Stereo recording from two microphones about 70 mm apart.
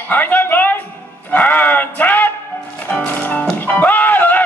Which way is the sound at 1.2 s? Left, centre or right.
Left.